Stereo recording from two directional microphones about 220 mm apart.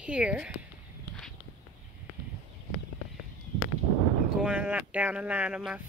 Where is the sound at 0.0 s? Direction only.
5° right (ahead or behind).